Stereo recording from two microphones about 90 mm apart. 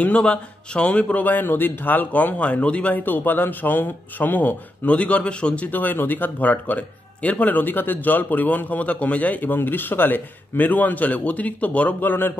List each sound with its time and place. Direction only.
0.0 s a man's voice: 15° left (ahead or behind)